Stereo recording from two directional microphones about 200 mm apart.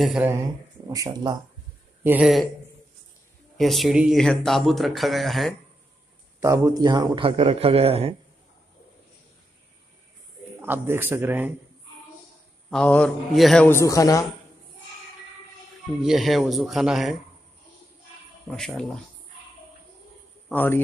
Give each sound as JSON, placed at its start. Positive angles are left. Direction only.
{"t": 0.0, "sound": "a man's voice", "side_deg": -5}
{"t": 0.8, "sound": "a man's voice", "side_deg": -15}
{"t": 2.0, "sound": "speech", "side_deg": -5}
{"t": 3.5, "sound": "speech", "side_deg": 0}
{"t": 6.4, "sound": "a man's voice", "side_deg": -15}
{"t": 10.6, "sound": "a man's voice", "side_deg": -10}
{"t": 12.6, "sound": "speech", "side_deg": 5}
{"t": 13.7, "sound": "a man's voice", "side_deg": 15}
{"t": 16.0, "sound": "speech", "side_deg": 0}
{"t": 18.5, "sound": "speech", "side_deg": 0}
{"t": 20.4, "sound": "a man's voice", "side_deg": 10}